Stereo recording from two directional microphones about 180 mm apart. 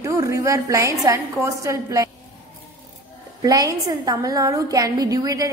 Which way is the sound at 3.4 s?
20° right (ahead or behind).